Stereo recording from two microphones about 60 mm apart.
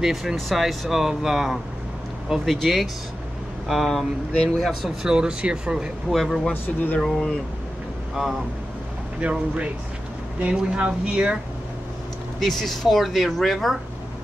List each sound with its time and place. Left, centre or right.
0.0 s speech: centre
5.0 s speech: centre
6.0 s speech: centre
6.5 s speech: left
7.0 s speech: centre
9.2 s speech: centre
12.4 s speech: centre